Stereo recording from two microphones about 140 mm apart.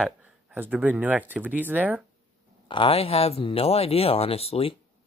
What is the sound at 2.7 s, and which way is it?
Speech, 40° left (ahead or behind).